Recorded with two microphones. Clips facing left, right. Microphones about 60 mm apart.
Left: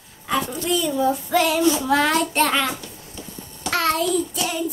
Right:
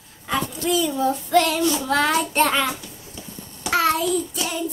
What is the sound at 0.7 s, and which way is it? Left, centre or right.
Child singing, centre.